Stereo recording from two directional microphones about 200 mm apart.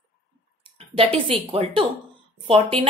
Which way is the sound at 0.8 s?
30° right (ahead or behind).